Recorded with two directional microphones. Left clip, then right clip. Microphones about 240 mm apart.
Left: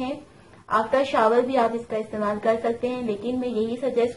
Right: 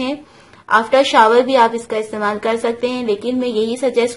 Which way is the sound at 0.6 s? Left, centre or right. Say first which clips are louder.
Right 9 dB; right.